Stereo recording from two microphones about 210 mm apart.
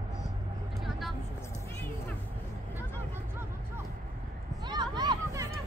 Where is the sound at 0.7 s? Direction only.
Centre (ahead or behind).